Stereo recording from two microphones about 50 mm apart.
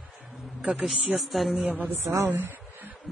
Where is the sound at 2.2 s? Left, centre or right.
Right.